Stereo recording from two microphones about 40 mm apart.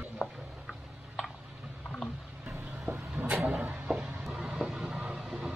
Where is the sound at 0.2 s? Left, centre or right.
Centre.